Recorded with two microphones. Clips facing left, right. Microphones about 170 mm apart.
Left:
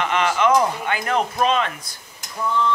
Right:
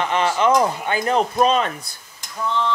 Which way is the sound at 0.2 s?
30° right (ahead or behind).